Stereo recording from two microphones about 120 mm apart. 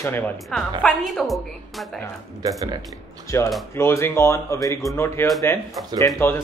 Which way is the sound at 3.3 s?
20° left (ahead or behind).